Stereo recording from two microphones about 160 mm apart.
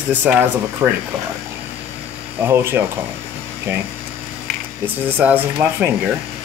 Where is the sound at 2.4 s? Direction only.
15° right (ahead or behind).